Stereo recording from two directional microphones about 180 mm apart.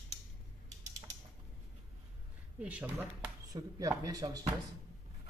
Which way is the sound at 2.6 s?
5° right (ahead or behind).